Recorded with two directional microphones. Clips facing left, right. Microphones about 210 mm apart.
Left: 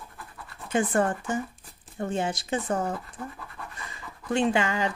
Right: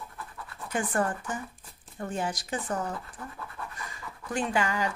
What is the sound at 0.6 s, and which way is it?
Speech, 25° left (ahead or behind).